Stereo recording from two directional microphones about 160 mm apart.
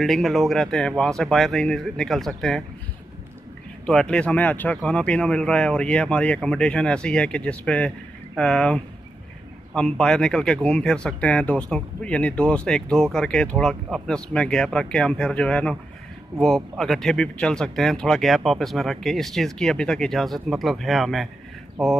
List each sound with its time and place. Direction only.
0.0 s speech: centre (ahead or behind)
3.8 s speech: 5° left (ahead or behind)